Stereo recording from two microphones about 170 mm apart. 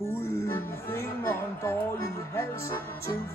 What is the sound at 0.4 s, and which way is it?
Music, 15° left (ahead or behind).